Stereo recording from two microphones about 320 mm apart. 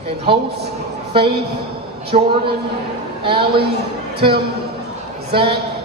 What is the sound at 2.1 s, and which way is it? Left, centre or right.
Speech, right.